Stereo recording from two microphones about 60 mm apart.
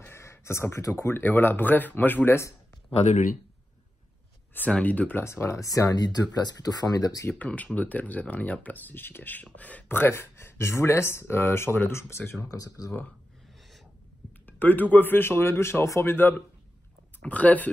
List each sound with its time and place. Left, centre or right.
0.2 s a sound: left
0.9 s speech: left
1.2 s speech: left
4.6 s speech: left
5.2 s speech: left
5.6 s speech: left
7.4 s speech: left
9.8 s speech: left
12.4 s speech: left
14.4 s speech: left
17.3 s speech: left